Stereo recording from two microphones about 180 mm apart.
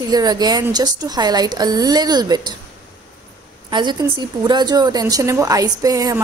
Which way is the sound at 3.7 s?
25° right (ahead or behind).